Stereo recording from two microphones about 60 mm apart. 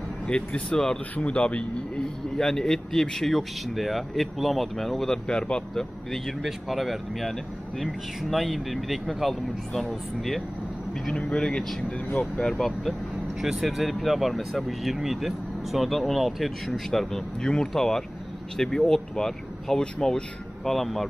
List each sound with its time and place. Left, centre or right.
0.3 s speech: centre
2.0 s a man's voice: centre
11.1 s a man's voice: centre
20.6 s a man's voice: centre